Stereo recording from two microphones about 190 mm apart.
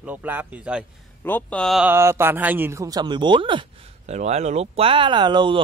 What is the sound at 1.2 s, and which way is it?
Speech, 10° left (ahead or behind).